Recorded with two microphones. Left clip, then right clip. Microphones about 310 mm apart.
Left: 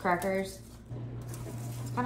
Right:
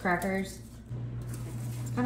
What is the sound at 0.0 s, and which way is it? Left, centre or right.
Speech, centre.